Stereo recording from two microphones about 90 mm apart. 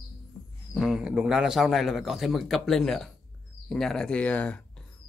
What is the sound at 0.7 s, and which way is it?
A man's voice, 5° right (ahead or behind).